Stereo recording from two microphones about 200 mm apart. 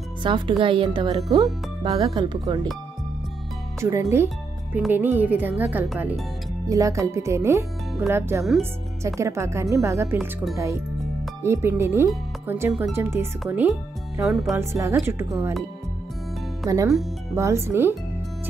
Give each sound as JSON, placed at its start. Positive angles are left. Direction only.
{"t": 0.2, "sound": "speech", "side_deg": -25}
{"t": 3.8, "sound": "speech", "side_deg": -15}
{"t": 6.7, "sound": "speech", "side_deg": -15}
{"t": 10.1, "sound": "speech", "side_deg": 0}
{"t": 11.4, "sound": "speech", "side_deg": -10}
{"t": 14.5, "sound": "speech", "side_deg": -15}
{"t": 16.6, "sound": "speech", "side_deg": -15}